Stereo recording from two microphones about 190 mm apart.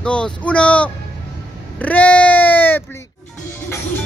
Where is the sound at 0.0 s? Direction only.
5° left (ahead or behind).